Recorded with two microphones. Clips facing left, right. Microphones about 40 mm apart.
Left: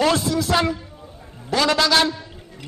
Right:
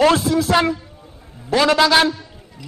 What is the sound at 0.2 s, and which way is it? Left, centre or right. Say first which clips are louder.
A man's voice: right 3 dB; centre.